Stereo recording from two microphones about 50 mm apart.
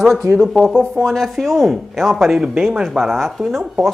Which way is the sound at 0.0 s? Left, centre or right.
Centre.